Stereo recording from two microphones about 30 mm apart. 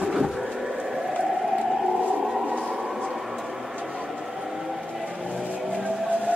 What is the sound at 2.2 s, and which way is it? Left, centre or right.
Train, centre.